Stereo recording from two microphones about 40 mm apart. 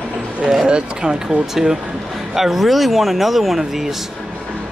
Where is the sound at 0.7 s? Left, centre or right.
Right.